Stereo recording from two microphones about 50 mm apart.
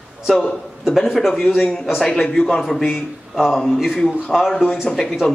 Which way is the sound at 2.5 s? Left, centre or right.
Centre.